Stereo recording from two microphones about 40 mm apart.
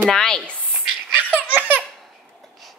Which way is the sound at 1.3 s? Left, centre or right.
Right.